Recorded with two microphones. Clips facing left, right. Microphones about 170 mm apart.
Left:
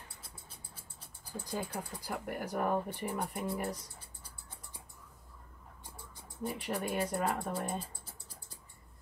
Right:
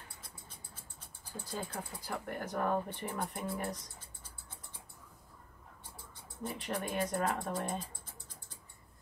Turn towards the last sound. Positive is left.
turn(degrees=5)  # may be behind; listen again after turning